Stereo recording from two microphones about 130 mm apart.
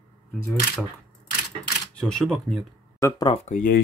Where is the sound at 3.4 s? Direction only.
75° left (ahead or behind).